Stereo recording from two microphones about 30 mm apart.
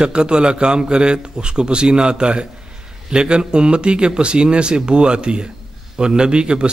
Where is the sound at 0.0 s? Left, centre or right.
Right.